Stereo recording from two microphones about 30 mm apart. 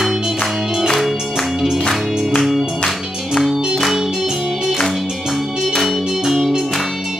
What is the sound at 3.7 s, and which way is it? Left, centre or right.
Music, centre.